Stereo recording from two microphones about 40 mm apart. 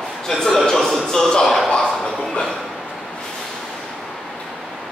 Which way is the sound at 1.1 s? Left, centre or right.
Centre.